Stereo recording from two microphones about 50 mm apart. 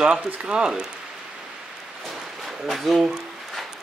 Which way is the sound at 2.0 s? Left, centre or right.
Centre.